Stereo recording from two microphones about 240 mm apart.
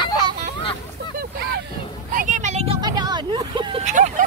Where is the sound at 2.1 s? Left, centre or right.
Right.